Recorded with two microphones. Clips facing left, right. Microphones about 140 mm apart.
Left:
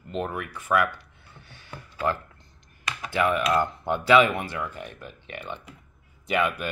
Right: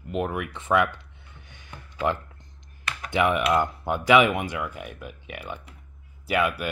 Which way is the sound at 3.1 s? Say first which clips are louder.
Right 1 dB; 15° right (ahead or behind).